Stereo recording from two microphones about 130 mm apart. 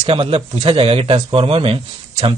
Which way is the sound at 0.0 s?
45° right (ahead or behind).